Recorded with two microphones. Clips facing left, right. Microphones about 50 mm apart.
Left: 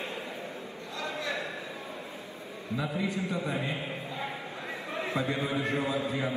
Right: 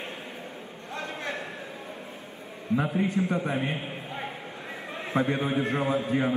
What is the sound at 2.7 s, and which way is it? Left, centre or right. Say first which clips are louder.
A man's voice: right 6 dB; right.